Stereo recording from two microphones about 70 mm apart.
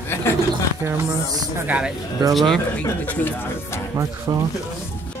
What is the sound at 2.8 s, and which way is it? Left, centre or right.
Speech, left.